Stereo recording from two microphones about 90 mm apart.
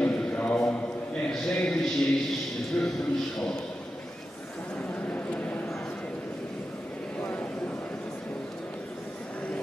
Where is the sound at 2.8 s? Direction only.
20° left (ahead or behind).